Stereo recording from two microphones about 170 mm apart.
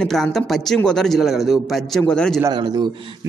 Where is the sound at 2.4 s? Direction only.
25° right (ahead or behind).